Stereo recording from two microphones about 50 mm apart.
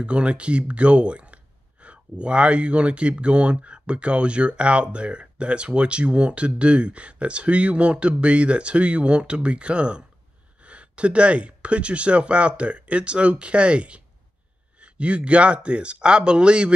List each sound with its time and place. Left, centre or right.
0.0 s speech: right